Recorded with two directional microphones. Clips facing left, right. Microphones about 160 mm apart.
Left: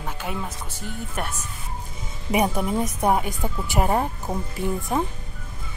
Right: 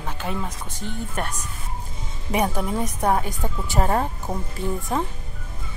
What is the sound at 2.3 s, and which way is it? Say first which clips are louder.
A woman's voice: left 1 dB; 10° left (ahead or behind).